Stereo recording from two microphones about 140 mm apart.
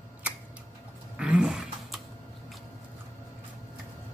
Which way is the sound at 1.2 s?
5° right (ahead or behind).